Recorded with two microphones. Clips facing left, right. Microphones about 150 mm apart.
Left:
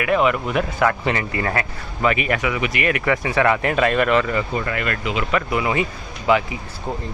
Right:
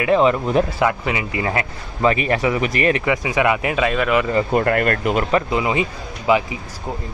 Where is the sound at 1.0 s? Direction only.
15° right (ahead or behind); by 3.0 s 35° right (ahead or behind).